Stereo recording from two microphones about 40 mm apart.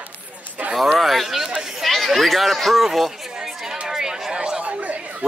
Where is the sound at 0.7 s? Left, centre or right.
Centre.